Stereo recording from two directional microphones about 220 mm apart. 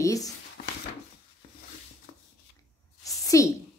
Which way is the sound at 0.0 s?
15° left (ahead or behind).